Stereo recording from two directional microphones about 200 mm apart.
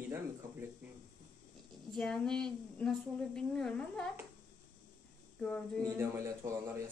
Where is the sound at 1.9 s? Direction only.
Centre (ahead or behind).